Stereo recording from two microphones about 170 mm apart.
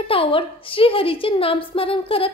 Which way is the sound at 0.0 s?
35° left (ahead or behind).